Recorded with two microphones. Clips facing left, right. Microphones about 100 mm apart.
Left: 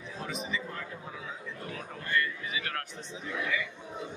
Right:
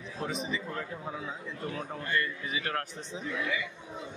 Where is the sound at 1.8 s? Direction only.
30° right (ahead or behind).